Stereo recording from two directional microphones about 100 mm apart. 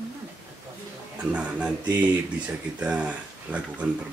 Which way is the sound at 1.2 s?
15° right (ahead or behind).